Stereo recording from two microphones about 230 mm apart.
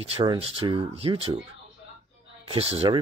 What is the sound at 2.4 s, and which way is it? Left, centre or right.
Speech, right.